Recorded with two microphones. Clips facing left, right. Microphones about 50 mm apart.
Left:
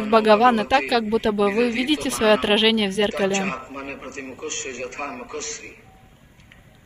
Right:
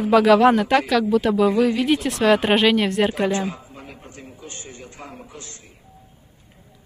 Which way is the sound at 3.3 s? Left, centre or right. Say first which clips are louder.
Left 1 dB; left.